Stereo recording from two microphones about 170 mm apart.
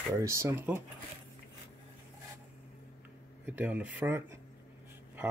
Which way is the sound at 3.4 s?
10° right (ahead or behind).